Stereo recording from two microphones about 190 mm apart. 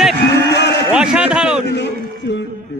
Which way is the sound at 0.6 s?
60° left (ahead or behind).